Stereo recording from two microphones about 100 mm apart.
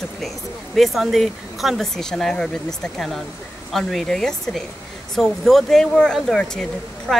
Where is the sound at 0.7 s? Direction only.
Centre (ahead or behind).